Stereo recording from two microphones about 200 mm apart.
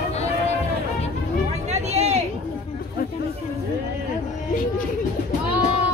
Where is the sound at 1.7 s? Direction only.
35° right (ahead or behind).